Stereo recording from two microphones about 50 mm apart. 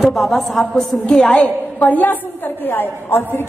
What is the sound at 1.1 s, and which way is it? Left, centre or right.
A woman's voice, left.